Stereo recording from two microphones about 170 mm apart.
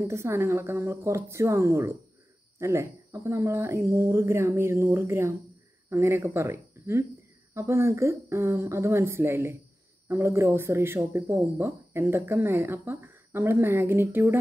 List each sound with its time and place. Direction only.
0.0 s speech: 15° right (ahead or behind)